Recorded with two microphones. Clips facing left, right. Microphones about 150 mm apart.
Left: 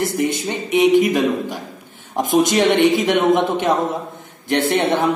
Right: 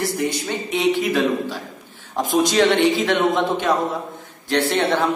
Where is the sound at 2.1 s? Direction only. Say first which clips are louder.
Left 2 dB; 20° left (ahead or behind).